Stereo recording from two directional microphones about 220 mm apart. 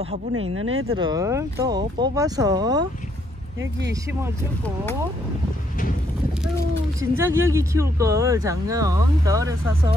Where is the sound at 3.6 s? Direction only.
50° right (ahead or behind).